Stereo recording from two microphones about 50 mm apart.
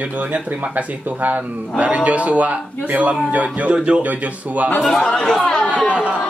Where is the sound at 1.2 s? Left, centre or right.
Right.